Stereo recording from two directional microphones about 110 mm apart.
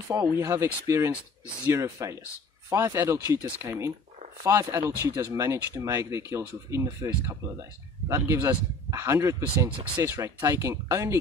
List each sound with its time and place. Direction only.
0.1 s speech: 25° right (ahead or behind)